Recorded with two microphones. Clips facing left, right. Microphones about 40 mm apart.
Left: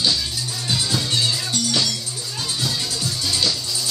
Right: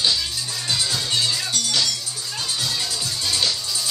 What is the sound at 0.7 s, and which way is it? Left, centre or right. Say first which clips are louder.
Music: left 1 dB; centre.